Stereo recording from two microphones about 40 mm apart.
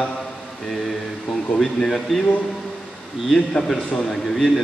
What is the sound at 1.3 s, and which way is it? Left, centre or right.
Speech, centre.